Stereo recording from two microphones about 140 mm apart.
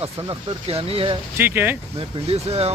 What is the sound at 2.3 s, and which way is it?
Speech, 45° right (ahead or behind).